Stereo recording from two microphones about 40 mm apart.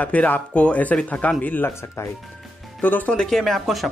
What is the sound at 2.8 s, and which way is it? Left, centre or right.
Speech, left.